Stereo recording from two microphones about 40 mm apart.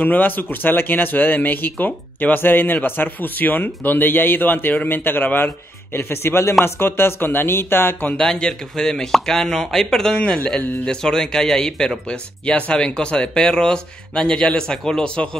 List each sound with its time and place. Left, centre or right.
0.0 s speech: left
5.9 s speech: left
8.2 s speech: centre